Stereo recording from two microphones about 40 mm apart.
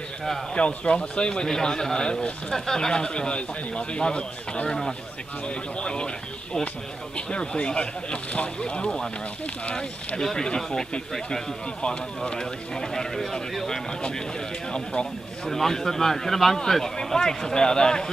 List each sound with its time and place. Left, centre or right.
0.6 s a man's voice: left
4.6 s speech: centre
5.5 s a man's voice: left
8.6 s a man's voice: centre
10.2 s speech: centre
14.7 s a man's voice: left
15.4 s speech: centre